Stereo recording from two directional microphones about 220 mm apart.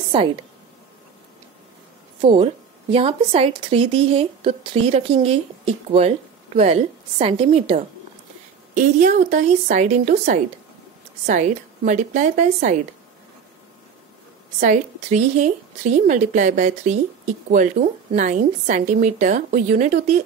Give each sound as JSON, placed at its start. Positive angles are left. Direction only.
{"t": 2.2, "sound": "a woman's voice", "side_deg": -25}
{"t": 14.6, "sound": "a woman's voice", "side_deg": -30}